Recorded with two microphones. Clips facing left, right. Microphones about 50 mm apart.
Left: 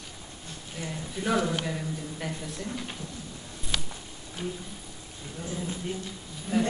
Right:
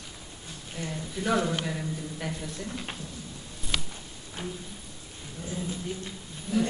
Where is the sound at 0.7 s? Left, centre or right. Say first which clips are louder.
Right 1 dB; centre.